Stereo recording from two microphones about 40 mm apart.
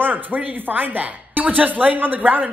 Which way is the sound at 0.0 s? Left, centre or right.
Right.